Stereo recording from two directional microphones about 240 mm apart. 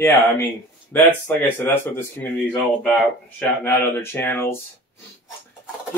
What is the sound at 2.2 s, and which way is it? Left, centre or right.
Speech, centre.